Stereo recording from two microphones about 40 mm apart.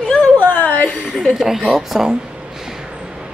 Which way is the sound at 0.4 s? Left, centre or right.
Left.